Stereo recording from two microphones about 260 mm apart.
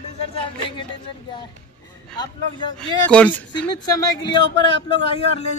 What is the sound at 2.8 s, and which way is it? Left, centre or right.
A man's voice, centre.